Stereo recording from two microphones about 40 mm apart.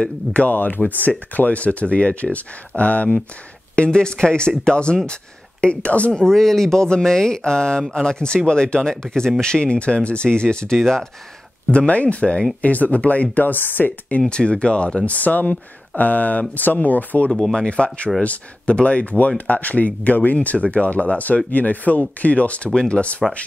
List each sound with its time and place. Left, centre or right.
0.0 s speech: left
0.6 s speech: left
3.7 s speech: left
6.2 s speech: centre
10.8 s speech: centre
11.7 s speech: left
12.6 s speech: left
14.3 s speech: left
15.1 s speech: left
17.6 s speech: left
19.1 s speech: left